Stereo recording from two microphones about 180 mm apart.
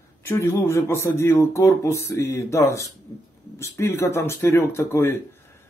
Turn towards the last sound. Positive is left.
turn(degrees=15)  # may be behind; listen again after turning